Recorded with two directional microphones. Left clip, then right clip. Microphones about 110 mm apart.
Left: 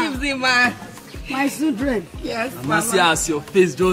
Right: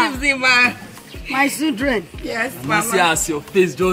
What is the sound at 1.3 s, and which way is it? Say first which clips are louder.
Speech: right 4 dB; 5° right (ahead or behind).